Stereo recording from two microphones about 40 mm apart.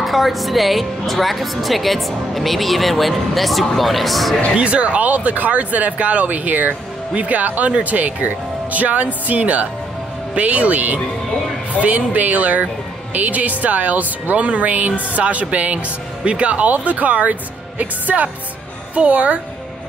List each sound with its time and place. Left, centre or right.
0.0 s speech: centre
4.6 s speech: right